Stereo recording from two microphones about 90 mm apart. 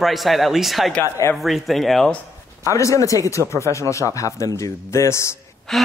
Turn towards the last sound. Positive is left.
turn(degrees=5)  # may be behind; listen again after turning